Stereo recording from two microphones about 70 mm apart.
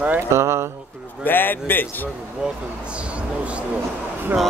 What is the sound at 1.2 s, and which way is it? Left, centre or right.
Speech, left.